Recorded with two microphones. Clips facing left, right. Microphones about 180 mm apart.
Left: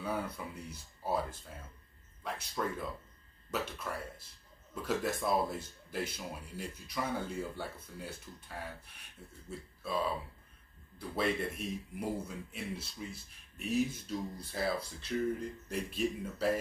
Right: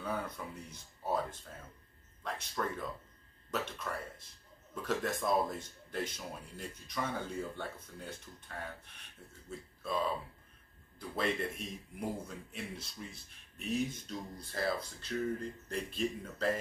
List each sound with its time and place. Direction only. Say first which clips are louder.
0.0 s speech: left 1 dB; 5° left (ahead or behind)
2.2 s speech: left 1 dB; 5° left (ahead or behind)